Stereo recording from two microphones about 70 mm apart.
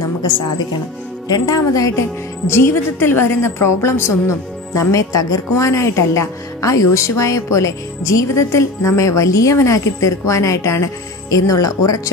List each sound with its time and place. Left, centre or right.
1.3 s a woman's voice: left